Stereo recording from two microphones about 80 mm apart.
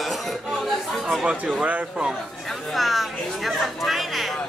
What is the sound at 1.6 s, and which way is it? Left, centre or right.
Speech, centre.